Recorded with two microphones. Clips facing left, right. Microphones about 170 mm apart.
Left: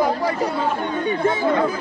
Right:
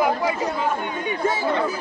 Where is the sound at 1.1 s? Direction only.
55° left (ahead or behind).